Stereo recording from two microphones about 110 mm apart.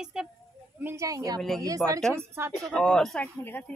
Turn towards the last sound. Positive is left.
turn(degrees=5)  # may be behind; listen again after turning